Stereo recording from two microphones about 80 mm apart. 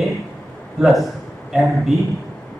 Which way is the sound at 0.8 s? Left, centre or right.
Centre.